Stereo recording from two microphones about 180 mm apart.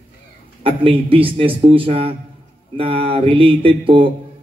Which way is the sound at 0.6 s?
30° right (ahead or behind).